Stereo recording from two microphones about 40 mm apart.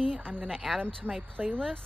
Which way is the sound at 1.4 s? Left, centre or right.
Right.